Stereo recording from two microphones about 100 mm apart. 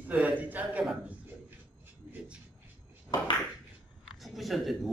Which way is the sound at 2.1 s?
15° right (ahead or behind).